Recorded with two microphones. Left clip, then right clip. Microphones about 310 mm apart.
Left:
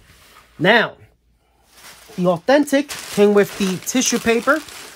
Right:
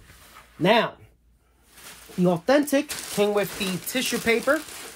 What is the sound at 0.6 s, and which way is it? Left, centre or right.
Speech, left.